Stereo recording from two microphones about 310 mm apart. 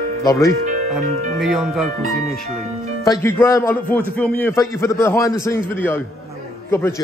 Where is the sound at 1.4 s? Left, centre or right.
Centre.